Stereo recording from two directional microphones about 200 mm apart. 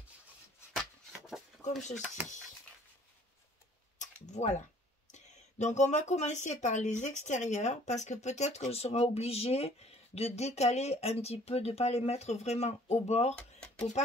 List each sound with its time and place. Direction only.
0.7 s a sound: centre (ahead or behind)
1.6 s speech: 35° left (ahead or behind)
4.0 s typing: 35° left (ahead or behind)
5.1 s speech: 35° left (ahead or behind)